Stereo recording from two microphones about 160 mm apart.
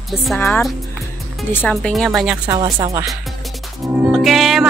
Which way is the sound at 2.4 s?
25° right (ahead or behind).